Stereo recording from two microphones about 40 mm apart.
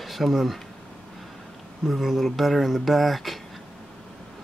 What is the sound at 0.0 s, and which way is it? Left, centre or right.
Speech, centre.